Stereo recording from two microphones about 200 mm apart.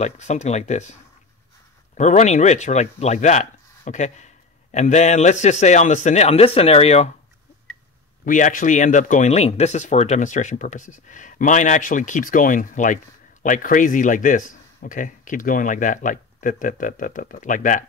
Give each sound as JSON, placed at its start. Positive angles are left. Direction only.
{"t": 0.0, "sound": "speech", "side_deg": 35}
{"t": 2.0, "sound": "speech", "side_deg": 35}
{"t": 8.3, "sound": "speech", "side_deg": 40}